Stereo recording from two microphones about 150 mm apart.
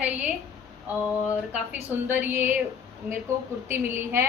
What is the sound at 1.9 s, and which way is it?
Speech, 15° right (ahead or behind).